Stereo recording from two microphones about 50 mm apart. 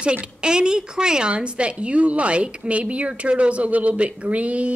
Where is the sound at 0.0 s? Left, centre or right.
Centre.